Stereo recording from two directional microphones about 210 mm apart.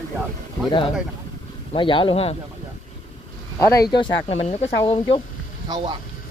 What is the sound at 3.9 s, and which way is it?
Speech, 25° left (ahead or behind).